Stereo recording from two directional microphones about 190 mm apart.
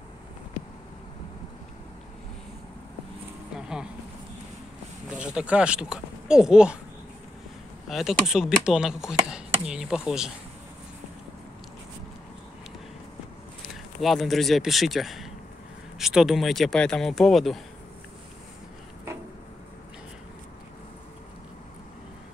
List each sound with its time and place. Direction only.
3.5 s a sound: 5° right (ahead or behind)
5.1 s speech: 5° right (ahead or behind)
7.9 s speech: centre (ahead or behind)
14.0 s speech: centre (ahead or behind)